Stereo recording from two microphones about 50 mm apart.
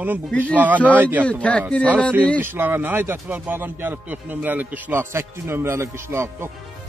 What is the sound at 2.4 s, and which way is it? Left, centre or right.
Speech, right.